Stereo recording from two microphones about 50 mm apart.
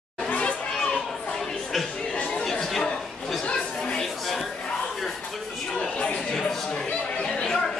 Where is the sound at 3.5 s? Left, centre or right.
Centre.